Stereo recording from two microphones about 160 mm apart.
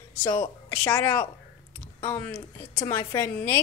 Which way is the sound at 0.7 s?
15° left (ahead or behind).